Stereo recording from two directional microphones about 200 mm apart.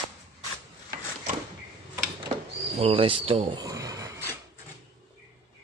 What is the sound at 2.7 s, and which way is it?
Speech, 25° right (ahead or behind).